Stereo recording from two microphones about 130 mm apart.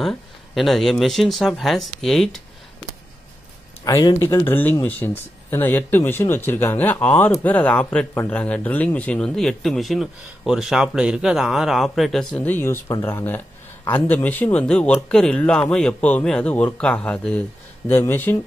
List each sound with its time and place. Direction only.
0.0 s speech: centre (ahead or behind)
3.8 s speech: 30° left (ahead or behind)